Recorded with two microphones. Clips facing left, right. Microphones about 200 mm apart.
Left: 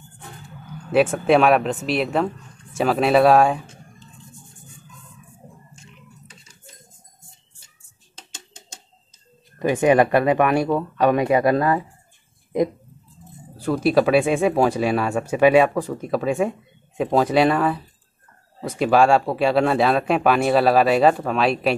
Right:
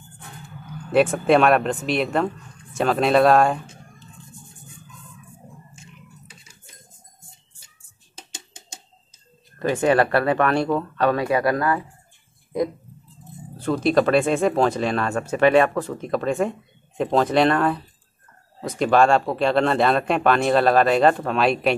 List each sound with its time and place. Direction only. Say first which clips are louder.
0.9 s speech: even; 5° left (ahead or behind)
9.6 s speech: left 2 dB; 15° left (ahead or behind)
13.6 s speech: left 1 dB; 5° left (ahead or behind)